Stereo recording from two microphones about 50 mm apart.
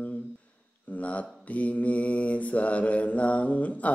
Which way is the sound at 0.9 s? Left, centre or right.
Left.